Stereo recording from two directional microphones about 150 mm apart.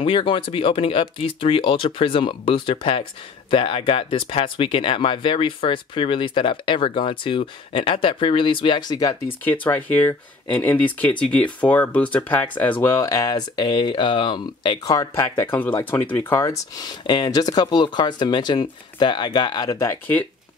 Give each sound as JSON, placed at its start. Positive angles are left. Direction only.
{"t": 0.0, "sound": "speech", "side_deg": 35}
{"t": 9.5, "sound": "speech", "side_deg": 10}
{"t": 13.0, "sound": "speech", "side_deg": 25}